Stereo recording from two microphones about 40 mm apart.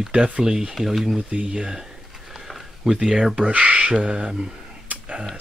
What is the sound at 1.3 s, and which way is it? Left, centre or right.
Speech, right.